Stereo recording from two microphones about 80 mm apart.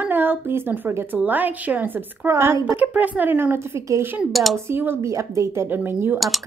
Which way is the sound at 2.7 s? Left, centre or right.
Right.